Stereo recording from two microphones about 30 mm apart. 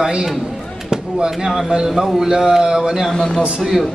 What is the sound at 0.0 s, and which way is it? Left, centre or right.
Speech, centre.